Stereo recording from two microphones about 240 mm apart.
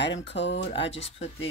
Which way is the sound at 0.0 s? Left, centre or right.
Left.